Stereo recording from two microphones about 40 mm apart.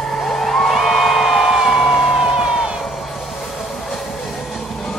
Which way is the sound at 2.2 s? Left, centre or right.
Centre.